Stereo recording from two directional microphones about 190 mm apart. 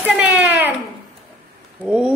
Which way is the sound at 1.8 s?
5° right (ahead or behind).